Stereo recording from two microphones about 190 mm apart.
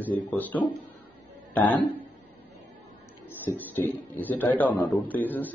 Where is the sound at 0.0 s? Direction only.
10° left (ahead or behind).